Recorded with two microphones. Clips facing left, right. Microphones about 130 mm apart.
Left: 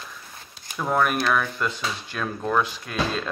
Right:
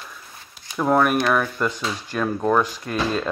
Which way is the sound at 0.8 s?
10° right (ahead or behind).